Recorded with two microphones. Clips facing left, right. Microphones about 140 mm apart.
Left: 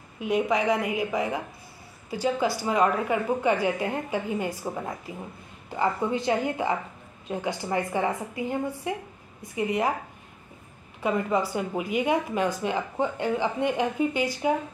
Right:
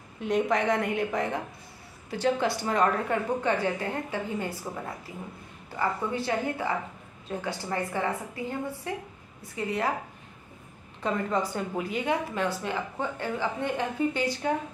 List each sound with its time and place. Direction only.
0.2 s a woman's voice: 5° left (ahead or behind)
11.0 s speech: 10° left (ahead or behind)